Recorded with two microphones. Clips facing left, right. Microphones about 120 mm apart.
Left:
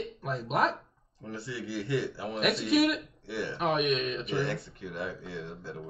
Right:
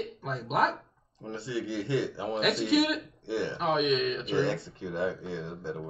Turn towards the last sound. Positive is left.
turn(degrees=-25)  # may be behind; listen again after turning